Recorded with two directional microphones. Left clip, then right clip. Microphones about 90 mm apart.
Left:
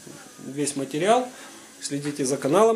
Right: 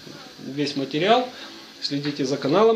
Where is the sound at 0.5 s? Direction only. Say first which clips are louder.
Right 2 dB; 40° left (ahead or behind).